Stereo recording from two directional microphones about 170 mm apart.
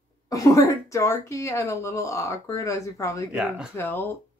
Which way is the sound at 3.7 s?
10° left (ahead or behind).